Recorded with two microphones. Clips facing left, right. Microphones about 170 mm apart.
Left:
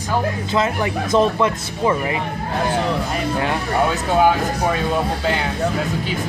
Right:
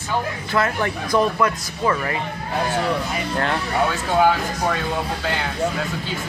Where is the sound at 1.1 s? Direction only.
25° left (ahead or behind).